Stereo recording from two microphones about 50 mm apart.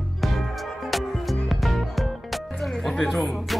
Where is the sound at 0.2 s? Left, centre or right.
Centre.